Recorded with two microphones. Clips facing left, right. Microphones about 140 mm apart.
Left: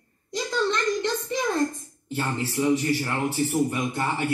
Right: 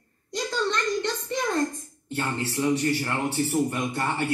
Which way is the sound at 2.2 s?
5° left (ahead or behind).